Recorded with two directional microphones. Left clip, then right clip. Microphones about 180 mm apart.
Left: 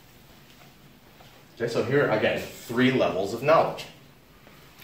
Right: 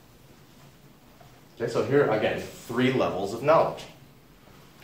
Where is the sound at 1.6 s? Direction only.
Centre (ahead or behind).